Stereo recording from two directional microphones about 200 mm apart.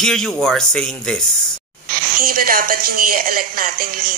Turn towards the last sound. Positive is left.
turn(degrees=-45)  # may be behind; listen again after turning